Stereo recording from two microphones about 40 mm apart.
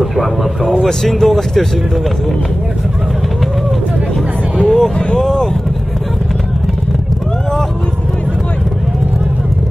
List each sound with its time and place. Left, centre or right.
0.0 s vehicle: centre
0.8 s speech: centre
4.6 s vehicle: centre